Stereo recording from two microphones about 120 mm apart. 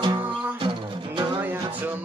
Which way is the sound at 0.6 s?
40° right (ahead or behind).